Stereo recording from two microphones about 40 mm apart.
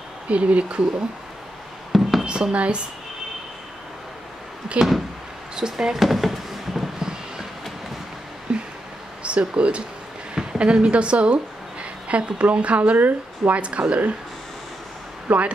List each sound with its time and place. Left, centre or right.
0.3 s speech: right
1.9 s a sound: centre
2.2 s speech: right
4.7 s speech: right
5.6 s speech: centre
5.9 s a sound: centre
7.0 s a sound: centre
8.5 s a sound: right
9.2 s a woman's voice: right
12.9 s speech: right
13.6 s speech: right
15.3 s speech: right